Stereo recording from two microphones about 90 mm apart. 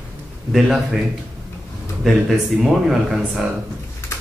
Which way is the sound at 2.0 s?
Centre (ahead or behind).